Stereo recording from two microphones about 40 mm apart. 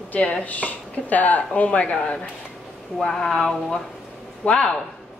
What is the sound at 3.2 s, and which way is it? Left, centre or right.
Speech, centre.